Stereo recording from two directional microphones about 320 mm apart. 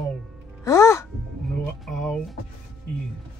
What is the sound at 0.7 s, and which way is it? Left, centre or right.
Music, centre.